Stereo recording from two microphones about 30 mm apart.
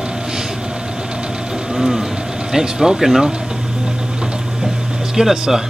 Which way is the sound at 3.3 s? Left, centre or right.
Right.